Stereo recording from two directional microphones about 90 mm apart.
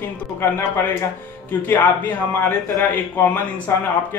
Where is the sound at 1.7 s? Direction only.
20° left (ahead or behind).